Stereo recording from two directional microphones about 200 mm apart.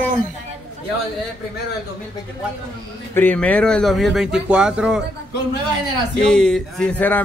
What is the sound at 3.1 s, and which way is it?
Speech, 10° left (ahead or behind).